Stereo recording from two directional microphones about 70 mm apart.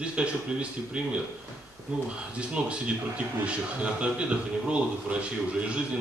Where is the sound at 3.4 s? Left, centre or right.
Centre.